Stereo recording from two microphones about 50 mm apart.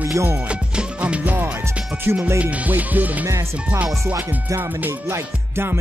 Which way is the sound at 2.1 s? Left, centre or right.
Right.